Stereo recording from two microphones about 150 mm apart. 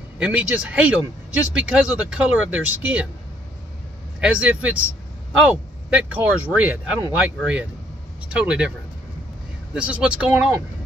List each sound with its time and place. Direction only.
0.2 s speech: 10° right (ahead or behind)
4.2 s speech: 10° right (ahead or behind)
9.8 s speech: 5° right (ahead or behind)